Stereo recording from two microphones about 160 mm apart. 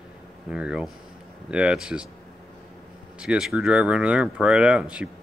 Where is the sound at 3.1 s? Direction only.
5° right (ahead or behind).